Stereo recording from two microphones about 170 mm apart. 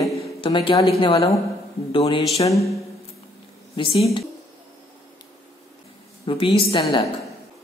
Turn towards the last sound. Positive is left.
turn(degrees=35)  # may be behind; listen again after turning